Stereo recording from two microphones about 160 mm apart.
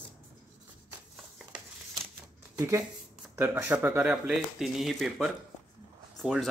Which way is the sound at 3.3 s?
15° right (ahead or behind).